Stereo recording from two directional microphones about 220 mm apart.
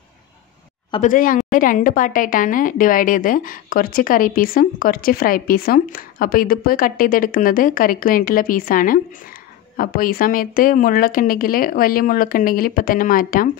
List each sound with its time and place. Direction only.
1.0 s speech: 35° left (ahead or behind)